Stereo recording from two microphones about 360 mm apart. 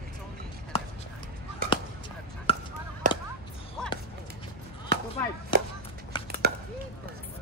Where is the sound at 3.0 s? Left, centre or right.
Right.